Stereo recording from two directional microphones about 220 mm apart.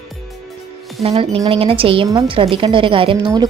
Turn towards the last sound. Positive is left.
turn(degrees=-20)  # may be behind; listen again after turning